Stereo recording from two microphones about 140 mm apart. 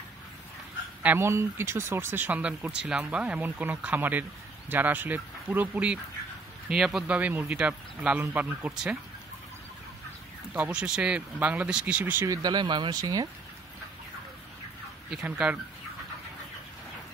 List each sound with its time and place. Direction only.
1.0 s speech: 15° right (ahead or behind)
10.5 s speech: 10° right (ahead or behind)
12.4 s speech: 30° right (ahead or behind)
15.0 s speech: 5° right (ahead or behind)